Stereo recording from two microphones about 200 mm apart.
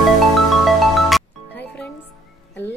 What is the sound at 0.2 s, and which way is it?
Music, centre (ahead or behind).